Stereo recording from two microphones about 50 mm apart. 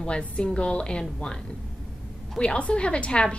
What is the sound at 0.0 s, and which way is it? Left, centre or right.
A woman's voice, left.